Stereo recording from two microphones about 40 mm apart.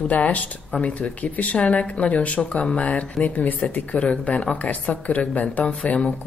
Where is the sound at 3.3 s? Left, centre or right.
Left.